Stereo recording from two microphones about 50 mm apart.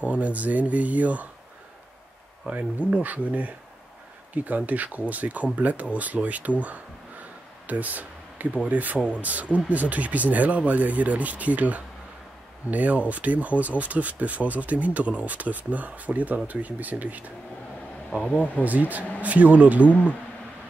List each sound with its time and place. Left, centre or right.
0.0 s speech: right
2.4 s speech: right
6.6 s a sound: right
8.6 s speech: right
18.6 s speech: right